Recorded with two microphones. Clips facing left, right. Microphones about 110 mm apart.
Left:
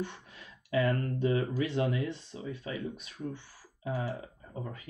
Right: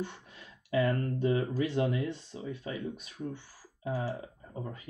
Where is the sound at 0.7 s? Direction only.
25° right (ahead or behind).